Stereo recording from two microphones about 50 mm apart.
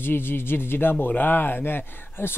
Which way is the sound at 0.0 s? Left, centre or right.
Left.